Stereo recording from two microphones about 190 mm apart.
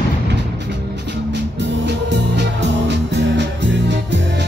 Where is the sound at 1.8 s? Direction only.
65° right (ahead or behind).